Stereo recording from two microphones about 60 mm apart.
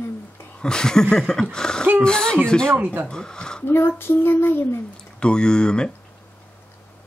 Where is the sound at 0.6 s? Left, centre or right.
Centre.